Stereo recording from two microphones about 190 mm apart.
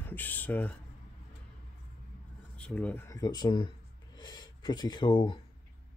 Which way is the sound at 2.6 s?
5° left (ahead or behind).